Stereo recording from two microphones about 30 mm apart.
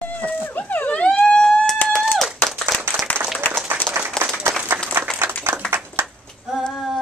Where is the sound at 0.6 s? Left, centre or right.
Left.